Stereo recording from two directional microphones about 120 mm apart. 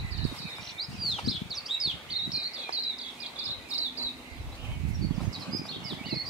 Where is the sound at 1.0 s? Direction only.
Centre (ahead or behind).